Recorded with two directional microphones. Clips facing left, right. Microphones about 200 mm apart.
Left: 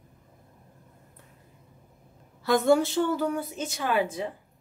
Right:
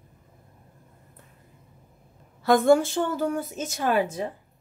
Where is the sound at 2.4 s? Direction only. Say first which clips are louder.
Right 3 dB; 50° right (ahead or behind).